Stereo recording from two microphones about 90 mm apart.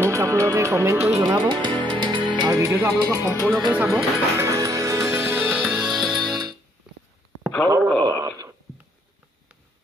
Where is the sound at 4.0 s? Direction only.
35° right (ahead or behind).